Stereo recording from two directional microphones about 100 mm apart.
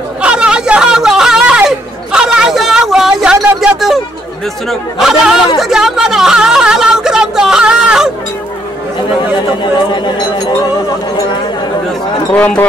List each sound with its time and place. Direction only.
0.2 s chatter: 10° right (ahead or behind)
2.1 s a sound: 5° right (ahead or behind)
4.6 s speech: 5° right (ahead or behind)
12.3 s speech: 15° left (ahead or behind)